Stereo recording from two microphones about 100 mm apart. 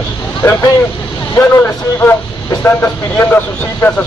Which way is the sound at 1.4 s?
25° left (ahead or behind).